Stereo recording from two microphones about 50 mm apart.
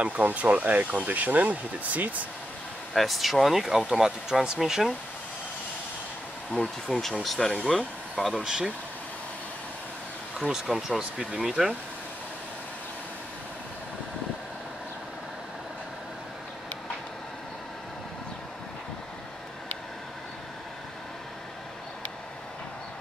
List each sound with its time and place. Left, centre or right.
0.0 s speech: right
2.9 s speech: centre
6.5 s speech: centre
8.4 s speech: centre
10.5 s speech: centre